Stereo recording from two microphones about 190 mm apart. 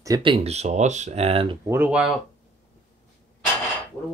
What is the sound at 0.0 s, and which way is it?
Speech, 25° right (ahead or behind).